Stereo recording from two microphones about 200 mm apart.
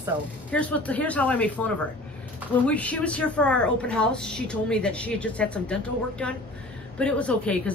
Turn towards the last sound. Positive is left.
turn(degrees=5)  # may be behind; listen again after turning